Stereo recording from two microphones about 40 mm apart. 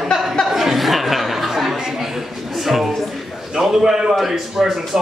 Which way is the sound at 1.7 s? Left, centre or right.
Centre.